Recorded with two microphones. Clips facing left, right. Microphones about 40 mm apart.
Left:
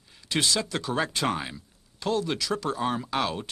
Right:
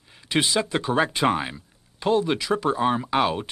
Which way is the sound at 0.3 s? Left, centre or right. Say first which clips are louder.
Right 4 dB; right.